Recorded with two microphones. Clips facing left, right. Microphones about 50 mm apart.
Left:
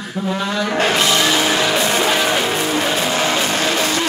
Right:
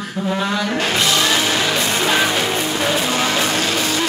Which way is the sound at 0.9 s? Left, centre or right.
Centre.